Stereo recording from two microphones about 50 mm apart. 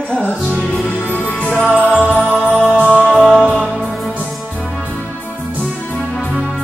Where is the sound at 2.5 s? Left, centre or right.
Centre.